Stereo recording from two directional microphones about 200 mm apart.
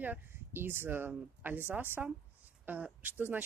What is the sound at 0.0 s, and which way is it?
Speech, 10° right (ahead or behind).